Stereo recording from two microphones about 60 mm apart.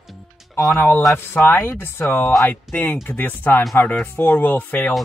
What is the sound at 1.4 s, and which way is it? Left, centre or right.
Speech, left.